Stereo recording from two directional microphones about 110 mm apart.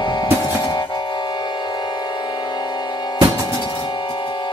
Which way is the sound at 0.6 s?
40° left (ahead or behind).